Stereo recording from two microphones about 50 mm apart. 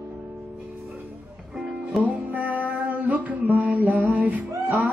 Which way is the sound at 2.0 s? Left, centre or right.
Right.